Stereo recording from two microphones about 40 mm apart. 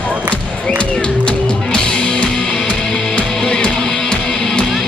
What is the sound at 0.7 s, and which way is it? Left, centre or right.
Music, left.